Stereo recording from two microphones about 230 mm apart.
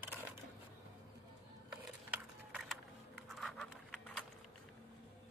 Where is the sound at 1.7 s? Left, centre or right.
Centre.